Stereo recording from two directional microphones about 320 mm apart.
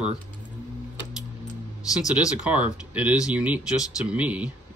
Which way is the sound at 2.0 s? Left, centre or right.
Centre.